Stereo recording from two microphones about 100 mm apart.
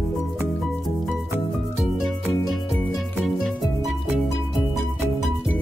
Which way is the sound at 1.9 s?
Centre (ahead or behind).